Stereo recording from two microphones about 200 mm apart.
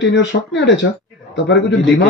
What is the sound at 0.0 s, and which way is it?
A man's voice, 65° left (ahead or behind).